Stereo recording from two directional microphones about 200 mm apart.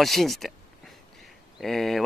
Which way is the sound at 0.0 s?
Centre (ahead or behind).